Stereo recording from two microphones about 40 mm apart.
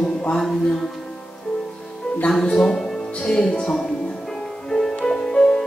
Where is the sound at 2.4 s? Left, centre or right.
Centre.